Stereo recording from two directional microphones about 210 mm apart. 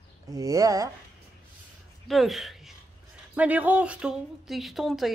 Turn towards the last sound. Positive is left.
turn(degrees=0)  # may be behind; listen again after turning